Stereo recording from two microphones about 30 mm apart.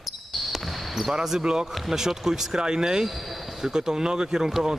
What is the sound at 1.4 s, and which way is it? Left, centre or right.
Speech, right.